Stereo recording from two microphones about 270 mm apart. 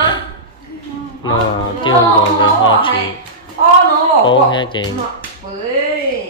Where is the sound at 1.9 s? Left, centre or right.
Centre.